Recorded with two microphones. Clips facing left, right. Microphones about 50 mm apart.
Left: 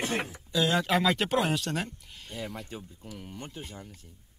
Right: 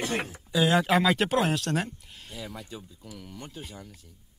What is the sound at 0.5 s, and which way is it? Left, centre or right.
Speech, centre.